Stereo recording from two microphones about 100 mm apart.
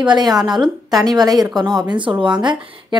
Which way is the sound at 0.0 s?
45° right (ahead or behind).